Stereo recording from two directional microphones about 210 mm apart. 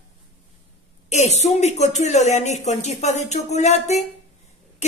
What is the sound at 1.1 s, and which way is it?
Speech, 30° left (ahead or behind).